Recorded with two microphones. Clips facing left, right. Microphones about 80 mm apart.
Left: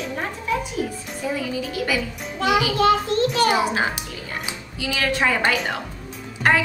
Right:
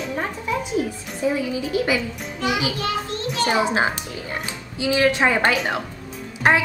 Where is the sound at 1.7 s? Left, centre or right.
Right.